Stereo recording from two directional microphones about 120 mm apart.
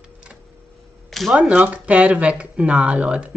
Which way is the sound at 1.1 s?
Centre (ahead or behind).